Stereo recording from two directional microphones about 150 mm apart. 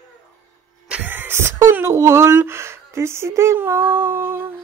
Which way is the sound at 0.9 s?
10° right (ahead or behind).